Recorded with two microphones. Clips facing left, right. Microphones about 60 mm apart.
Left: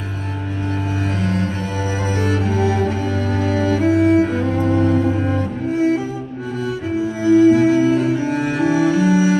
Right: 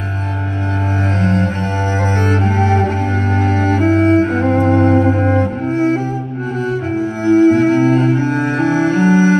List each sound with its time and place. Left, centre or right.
1.2 s cello: right
7.0 s cello: right